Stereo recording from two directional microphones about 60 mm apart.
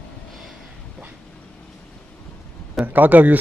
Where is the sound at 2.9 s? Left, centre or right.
Right.